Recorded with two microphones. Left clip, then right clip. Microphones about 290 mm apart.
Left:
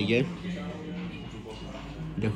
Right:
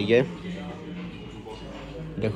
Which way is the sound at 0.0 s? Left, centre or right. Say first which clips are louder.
Right 6 dB; centre.